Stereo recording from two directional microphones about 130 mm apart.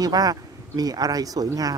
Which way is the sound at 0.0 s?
30° right (ahead or behind).